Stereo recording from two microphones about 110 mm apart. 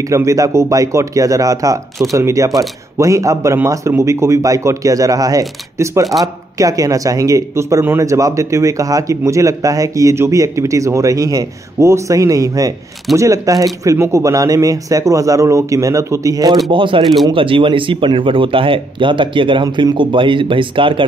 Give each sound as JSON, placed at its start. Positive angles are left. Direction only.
{"t": 0.1, "sound": "speech", "side_deg": -30}
{"t": 16.7, "sound": "speech", "side_deg": -50}